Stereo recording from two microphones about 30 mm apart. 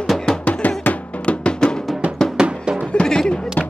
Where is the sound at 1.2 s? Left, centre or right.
Left.